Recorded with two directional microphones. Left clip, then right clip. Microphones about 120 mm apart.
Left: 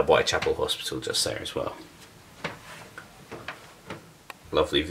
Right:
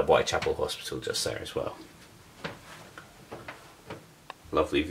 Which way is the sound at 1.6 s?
15° right (ahead or behind).